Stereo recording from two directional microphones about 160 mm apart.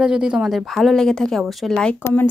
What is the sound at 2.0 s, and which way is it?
Speech, 15° left (ahead or behind).